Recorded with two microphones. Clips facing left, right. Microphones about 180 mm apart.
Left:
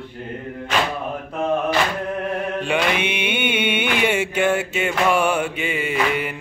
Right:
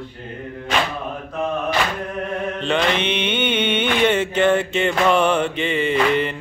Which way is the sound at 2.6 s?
10° left (ahead or behind).